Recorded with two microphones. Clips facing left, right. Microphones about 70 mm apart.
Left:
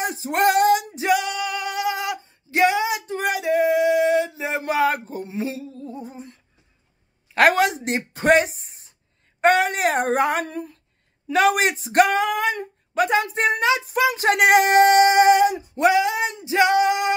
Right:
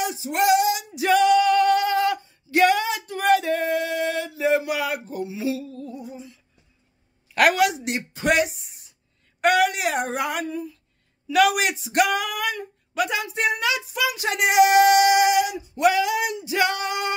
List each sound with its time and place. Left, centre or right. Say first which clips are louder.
0.0 s female singing: left 2 dB; left
1.1 s male singing: right 8 dB; centre
2.2 s a sound: right 1 dB; left
7.3 s speech: left 2 dB; left
9.4 s a sound: left 2 dB; left
10.4 s speech: right 1 dB; left
11.3 s speech: left 1 dB; left
14.3 s speech: even; left
15.8 s male singing: left 2 dB; left